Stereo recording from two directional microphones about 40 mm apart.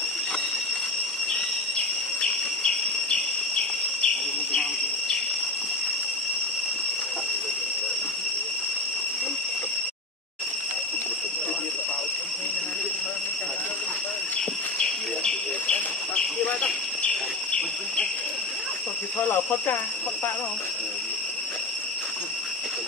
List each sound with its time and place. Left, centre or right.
2.6 s insect: centre
14.8 s a sound: left
19.1 s snake: left